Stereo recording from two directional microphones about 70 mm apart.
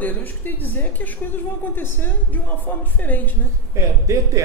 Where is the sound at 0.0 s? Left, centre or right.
Left.